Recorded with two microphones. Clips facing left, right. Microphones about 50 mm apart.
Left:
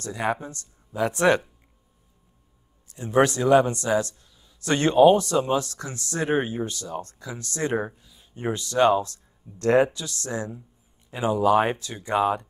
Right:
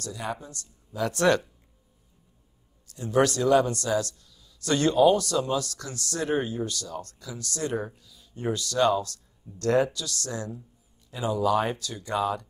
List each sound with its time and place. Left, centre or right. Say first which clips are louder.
0.0 s a man's voice: left 7 dB; left
2.9 s a man's voice: left 3 dB; left